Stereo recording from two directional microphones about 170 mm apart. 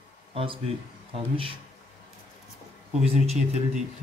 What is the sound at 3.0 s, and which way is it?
Speech, 40° right (ahead or behind).